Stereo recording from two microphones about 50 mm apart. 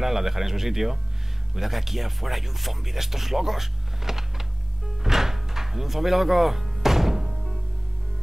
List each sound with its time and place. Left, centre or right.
0.0 s speech: centre
5.0 s music: centre